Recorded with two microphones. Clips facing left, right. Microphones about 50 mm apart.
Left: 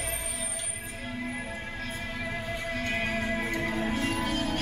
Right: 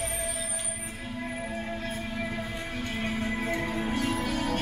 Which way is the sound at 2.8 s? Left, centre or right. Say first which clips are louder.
Left 1 dB; left.